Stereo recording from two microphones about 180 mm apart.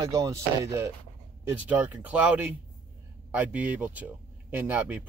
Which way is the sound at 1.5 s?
10° right (ahead or behind).